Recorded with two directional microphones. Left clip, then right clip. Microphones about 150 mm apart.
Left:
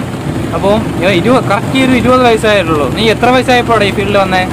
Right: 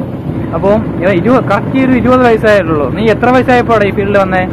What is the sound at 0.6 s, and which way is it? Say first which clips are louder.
Speech: right 1 dB; 20° left (ahead or behind).